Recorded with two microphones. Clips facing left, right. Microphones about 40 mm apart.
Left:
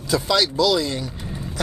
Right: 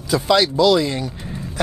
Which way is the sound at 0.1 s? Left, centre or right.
Centre.